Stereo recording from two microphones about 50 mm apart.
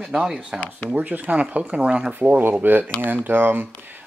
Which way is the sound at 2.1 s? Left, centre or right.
Right.